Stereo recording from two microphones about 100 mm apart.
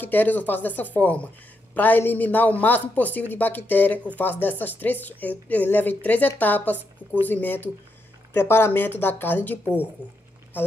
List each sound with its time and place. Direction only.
0.0 s a woman's voice: 20° left (ahead or behind)